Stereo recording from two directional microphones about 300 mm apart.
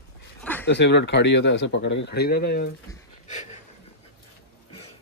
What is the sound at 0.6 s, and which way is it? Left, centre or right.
Speech, left.